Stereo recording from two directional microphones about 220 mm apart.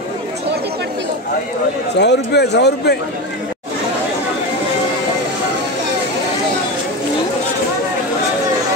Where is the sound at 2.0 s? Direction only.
50° left (ahead or behind).